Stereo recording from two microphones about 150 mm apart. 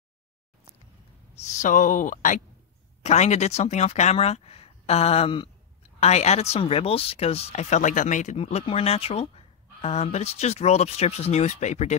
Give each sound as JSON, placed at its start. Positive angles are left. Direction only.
{"t": 1.3, "sound": "speech", "side_deg": 50}
{"t": 3.0, "sound": "speech", "side_deg": 50}